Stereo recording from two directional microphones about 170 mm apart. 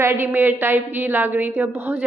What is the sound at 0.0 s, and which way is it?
A woman's voice, 15° right (ahead or behind).